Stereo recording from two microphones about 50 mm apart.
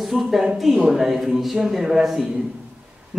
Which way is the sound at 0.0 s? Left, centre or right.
Centre.